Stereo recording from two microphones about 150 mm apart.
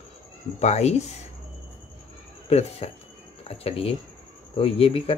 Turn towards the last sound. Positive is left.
turn(degrees=40)  # may be behind; listen again after turning